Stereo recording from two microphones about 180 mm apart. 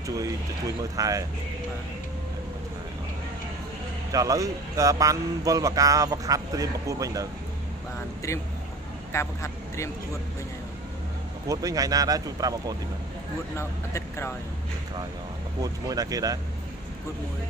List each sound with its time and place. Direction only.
0.9 s a man's voice: 20° right (ahead or behind)
4.1 s a man's voice: 20° right (ahead or behind)
8.2 s speech: 15° left (ahead or behind)
11.4 s a man's voice: 20° right (ahead or behind)
13.6 s speech: 15° left (ahead or behind)
15.6 s a man's voice: 20° right (ahead or behind)